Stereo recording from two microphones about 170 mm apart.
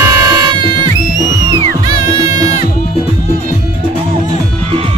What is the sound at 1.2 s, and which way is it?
Music, 25° right (ahead or behind).